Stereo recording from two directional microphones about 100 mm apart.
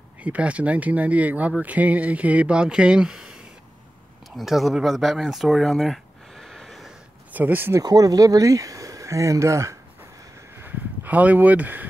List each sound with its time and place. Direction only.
0.2 s speech: 15° right (ahead or behind)
4.4 s speech: centre (ahead or behind)
7.3 s speech: 20° right (ahead or behind)
7.8 s speech: 40° right (ahead or behind)
10.6 s a sound: 15° right (ahead or behind)